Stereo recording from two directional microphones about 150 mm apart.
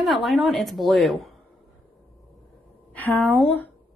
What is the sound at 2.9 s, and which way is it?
Speech, 10° left (ahead or behind).